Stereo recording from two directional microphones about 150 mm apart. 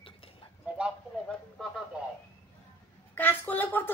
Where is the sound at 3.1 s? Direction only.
10° left (ahead or behind).